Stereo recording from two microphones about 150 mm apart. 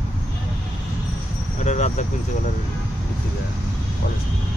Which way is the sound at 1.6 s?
50° left (ahead or behind).